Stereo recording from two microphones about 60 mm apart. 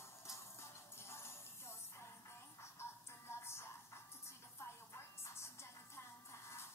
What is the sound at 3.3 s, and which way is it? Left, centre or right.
Music, left.